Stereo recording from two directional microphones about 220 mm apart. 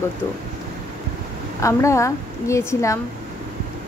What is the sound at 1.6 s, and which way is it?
Speech, 15° left (ahead or behind).